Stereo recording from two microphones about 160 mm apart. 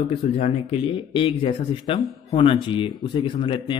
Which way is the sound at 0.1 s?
40° left (ahead or behind).